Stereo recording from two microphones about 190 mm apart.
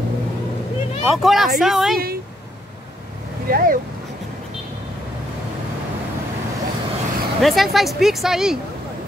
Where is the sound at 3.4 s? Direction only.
50° right (ahead or behind).